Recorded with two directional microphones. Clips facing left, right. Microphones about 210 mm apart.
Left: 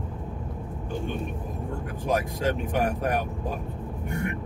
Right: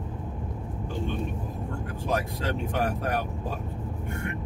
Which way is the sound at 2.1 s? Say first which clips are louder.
Left 3 dB; 15° left (ahead or behind).